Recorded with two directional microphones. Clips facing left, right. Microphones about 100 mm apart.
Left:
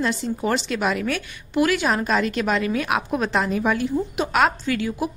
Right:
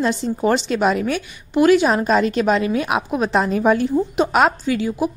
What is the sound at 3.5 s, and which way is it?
A woman's voice, 35° right (ahead or behind).